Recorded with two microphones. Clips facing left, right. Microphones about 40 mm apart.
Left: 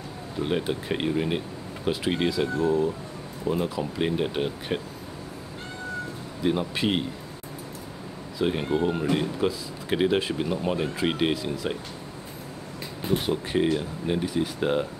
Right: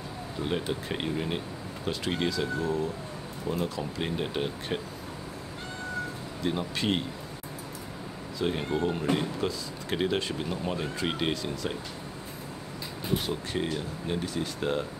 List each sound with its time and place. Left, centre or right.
0.4 s speech: centre
6.4 s speech: centre
8.4 s speech: centre
13.2 s speech: centre